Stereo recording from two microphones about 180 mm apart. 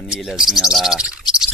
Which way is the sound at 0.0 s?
Centre (ahead or behind).